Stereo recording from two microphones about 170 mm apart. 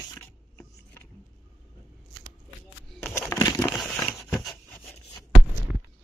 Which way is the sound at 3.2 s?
20° left (ahead or behind).